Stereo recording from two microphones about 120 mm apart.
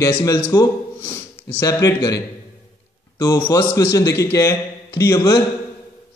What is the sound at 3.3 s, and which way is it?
A man's voice, 25° left (ahead or behind).